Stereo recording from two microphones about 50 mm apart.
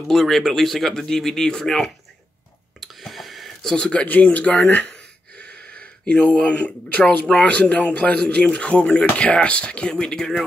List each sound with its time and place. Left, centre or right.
0.1 s speech: centre
2.8 s a sound: centre
3.6 s speech: left